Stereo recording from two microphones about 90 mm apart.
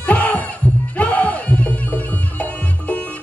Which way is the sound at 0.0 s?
15° left (ahead or behind).